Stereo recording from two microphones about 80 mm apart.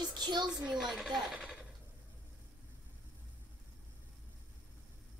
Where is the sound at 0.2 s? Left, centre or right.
Right.